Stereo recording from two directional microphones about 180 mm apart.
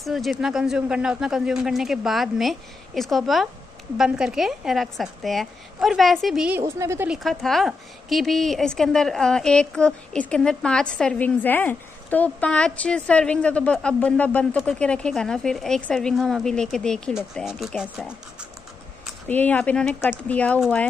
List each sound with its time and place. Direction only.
0.0 s a woman's voice: centre (ahead or behind)
6.6 s a woman's voice: 15° right (ahead or behind)
7.1 s a woman's voice: centre (ahead or behind)
19.2 s speech: 10° left (ahead or behind)